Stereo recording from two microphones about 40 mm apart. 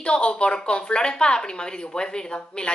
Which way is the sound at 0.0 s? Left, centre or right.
Left.